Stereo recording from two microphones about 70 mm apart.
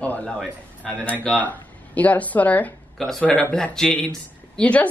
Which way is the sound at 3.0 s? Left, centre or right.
Centre.